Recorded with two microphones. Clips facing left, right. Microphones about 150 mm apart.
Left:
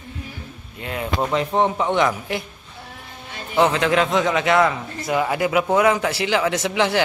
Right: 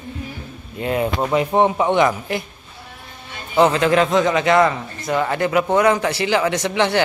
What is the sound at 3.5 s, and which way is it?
A man's voice, centre (ahead or behind).